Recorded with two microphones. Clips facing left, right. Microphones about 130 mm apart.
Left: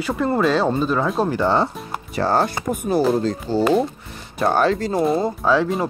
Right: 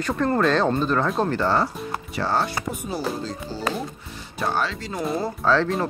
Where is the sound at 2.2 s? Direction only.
45° left (ahead or behind).